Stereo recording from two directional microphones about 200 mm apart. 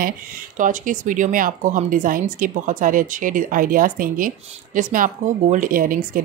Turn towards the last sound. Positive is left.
turn(degrees=-45)  # may be behind; listen again after turning